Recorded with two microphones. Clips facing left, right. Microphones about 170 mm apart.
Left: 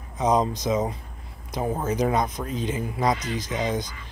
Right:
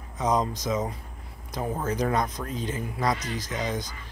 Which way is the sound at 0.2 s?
20° left (ahead or behind).